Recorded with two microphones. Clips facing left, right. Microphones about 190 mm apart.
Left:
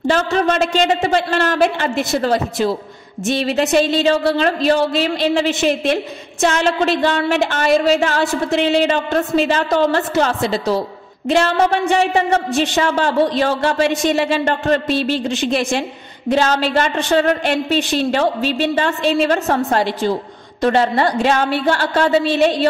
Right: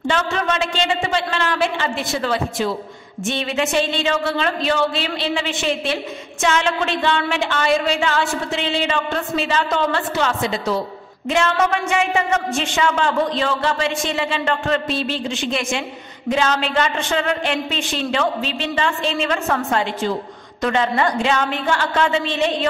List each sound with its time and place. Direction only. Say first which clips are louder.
0.0 s a woman's voice: left 5 dB; 35° left (ahead or behind)